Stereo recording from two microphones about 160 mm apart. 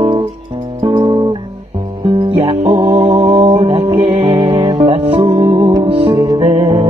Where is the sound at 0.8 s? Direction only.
30° right (ahead or behind).